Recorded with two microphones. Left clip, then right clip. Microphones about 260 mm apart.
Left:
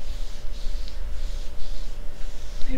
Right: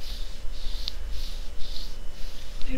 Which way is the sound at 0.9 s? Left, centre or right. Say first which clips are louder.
Right 10 dB; right.